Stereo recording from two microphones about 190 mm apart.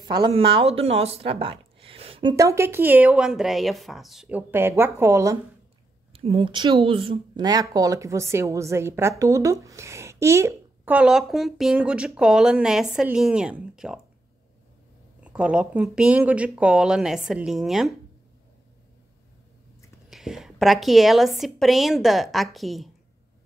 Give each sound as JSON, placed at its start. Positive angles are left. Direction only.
{"t": 0.1, "sound": "speech", "side_deg": -25}
{"t": 2.3, "sound": "speech", "side_deg": -15}
{"t": 6.1, "sound": "a woman's voice", "side_deg": -30}
{"t": 15.2, "sound": "a woman's voice", "side_deg": -5}
{"t": 20.1, "sound": "a woman's voice", "side_deg": 0}